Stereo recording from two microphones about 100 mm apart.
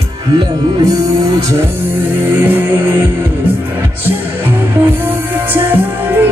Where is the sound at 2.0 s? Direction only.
20° right (ahead or behind).